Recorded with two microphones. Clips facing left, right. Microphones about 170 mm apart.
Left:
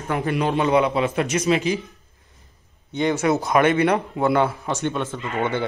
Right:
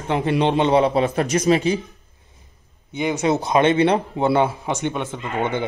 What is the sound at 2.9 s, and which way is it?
Speech, 10° right (ahead or behind).